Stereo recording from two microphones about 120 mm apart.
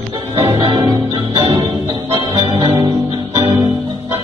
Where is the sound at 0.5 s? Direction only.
40° right (ahead or behind).